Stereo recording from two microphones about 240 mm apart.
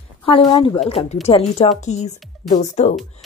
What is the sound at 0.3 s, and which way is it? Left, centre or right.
Speech, centre.